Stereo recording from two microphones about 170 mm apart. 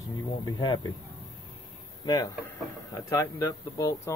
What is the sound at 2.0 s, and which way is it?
Speech, 25° left (ahead or behind).